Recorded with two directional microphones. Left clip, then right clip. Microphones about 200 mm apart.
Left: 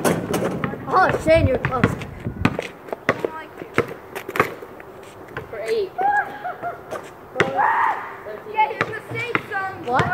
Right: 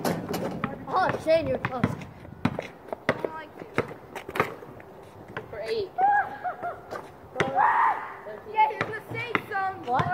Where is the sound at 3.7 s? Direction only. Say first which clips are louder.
Left 7 dB; 15° left (ahead or behind).